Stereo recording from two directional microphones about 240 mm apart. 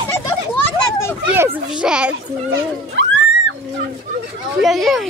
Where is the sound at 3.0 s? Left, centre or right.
Right.